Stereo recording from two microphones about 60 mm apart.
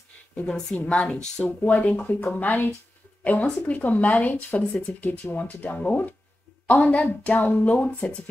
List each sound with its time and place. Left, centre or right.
0.5 s a woman's voice: centre; by 8.0 s left